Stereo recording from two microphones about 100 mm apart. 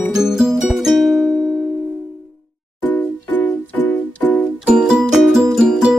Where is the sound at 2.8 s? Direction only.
20° left (ahead or behind).